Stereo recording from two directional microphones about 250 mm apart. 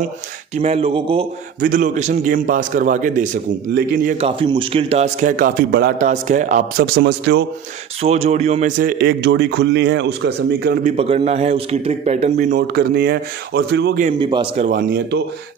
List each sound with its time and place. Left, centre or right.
0.6 s a man's voice: right
7.0 s a man's voice: right
8.0 s speech: right
11.0 s a man's voice: right
12.5 s speech: right
14.1 s a man's voice: centre
14.7 s speech: right